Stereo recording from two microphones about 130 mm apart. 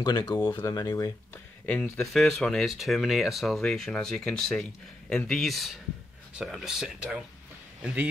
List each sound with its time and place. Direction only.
0.0 s speech: 30° left (ahead or behind)
1.3 s speech: 10° left (ahead or behind); by 8.1 s 10° right (ahead or behind)